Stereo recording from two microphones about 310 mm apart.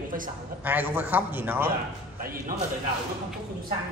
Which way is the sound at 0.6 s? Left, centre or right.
Centre.